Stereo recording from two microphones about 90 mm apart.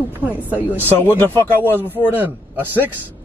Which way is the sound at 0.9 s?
25° left (ahead or behind).